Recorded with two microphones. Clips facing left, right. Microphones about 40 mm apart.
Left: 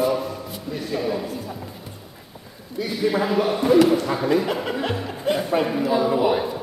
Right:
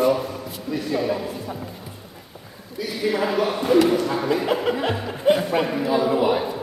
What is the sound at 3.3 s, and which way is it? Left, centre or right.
Speech, centre.